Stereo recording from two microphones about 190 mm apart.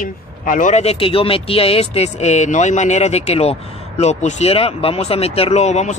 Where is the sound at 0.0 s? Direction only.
45° left (ahead or behind).